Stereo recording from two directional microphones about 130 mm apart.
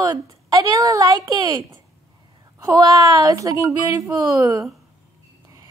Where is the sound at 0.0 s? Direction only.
30° right (ahead or behind).